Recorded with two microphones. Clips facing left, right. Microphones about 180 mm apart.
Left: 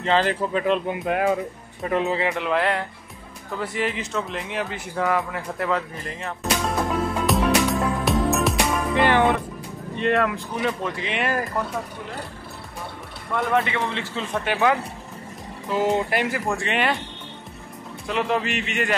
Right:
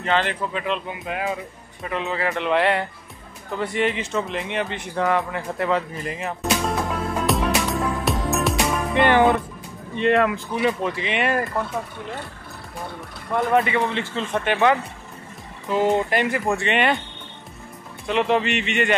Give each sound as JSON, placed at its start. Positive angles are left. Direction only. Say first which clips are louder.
{"t": 0.0, "sound": "speech", "louder": "left 2 dB", "side_deg": 35}
{"t": 2.1, "sound": "speech", "louder": "even", "side_deg": 20}
{"t": 2.4, "sound": "speech", "louder": "right 3 dB", "side_deg": 0}
{"t": 3.5, "sound": "a sound", "louder": "right 3 dB", "side_deg": 0}
{"t": 9.9, "sound": "speech", "louder": "right 3 dB", "side_deg": 0}
{"t": 13.6, "sound": "speech", "louder": "right 3 dB", "side_deg": 0}
{"t": 18.0, "sound": "speech", "louder": "right 3 dB", "side_deg": 0}